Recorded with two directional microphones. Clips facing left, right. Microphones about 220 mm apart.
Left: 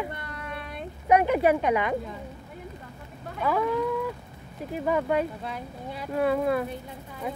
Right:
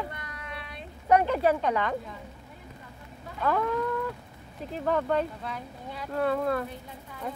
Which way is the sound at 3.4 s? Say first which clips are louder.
Left 2 dB; 5° left (ahead or behind).